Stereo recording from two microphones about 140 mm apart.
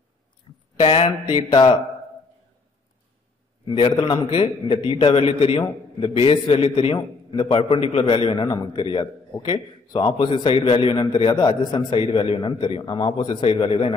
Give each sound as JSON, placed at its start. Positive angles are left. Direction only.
{"t": 0.7, "sound": "a man's voice", "side_deg": 45}
{"t": 3.6, "sound": "a man's voice", "side_deg": 35}